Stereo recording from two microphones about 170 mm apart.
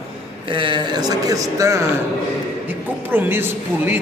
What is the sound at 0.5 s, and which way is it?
Speech, 30° right (ahead or behind).